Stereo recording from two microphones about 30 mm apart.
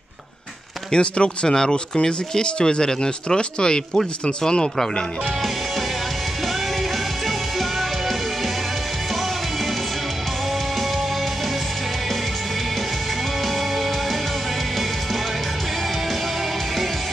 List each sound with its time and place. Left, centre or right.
0.9 s speech: left